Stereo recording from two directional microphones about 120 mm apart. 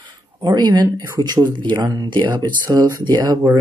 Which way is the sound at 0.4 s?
35° right (ahead or behind).